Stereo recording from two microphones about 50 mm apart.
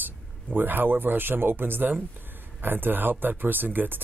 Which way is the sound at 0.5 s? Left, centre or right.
Right.